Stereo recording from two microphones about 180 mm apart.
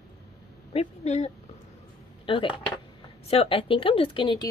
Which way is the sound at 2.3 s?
30° left (ahead or behind).